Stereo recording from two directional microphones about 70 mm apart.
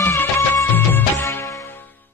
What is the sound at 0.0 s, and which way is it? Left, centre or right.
Music, left.